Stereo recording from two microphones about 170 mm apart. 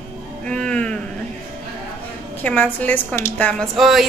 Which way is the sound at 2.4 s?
10° left (ahead or behind).